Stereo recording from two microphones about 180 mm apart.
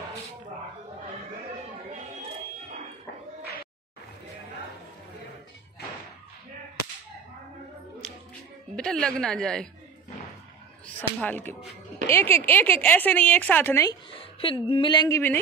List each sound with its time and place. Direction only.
8.7 s a woman's voice: 5° left (ahead or behind)
11.0 s speech: 10° left (ahead or behind)
14.1 s a woman's voice: 30° left (ahead or behind); by 15.4 s 15° left (ahead or behind)